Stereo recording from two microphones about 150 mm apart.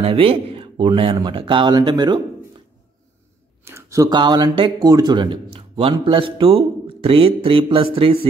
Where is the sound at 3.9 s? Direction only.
30° right (ahead or behind).